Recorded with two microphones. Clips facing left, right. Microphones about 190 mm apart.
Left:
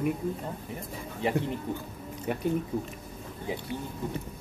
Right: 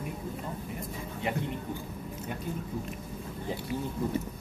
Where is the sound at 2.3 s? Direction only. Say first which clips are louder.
Left 8 dB; 65° left (ahead or behind).